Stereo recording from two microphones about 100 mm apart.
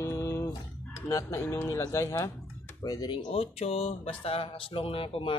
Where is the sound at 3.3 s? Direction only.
85° left; by 5.4 s 65° left (ahead or behind).